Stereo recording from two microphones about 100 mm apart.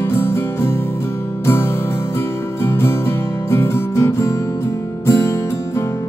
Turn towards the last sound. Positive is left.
turn(degrees=30)  # may be behind; listen again after turning